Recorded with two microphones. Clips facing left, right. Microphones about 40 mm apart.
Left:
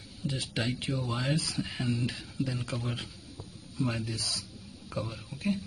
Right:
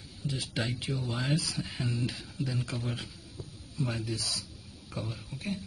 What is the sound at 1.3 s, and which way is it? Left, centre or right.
Speech, left.